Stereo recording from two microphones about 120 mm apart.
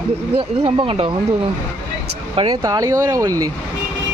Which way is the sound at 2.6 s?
25° right (ahead or behind).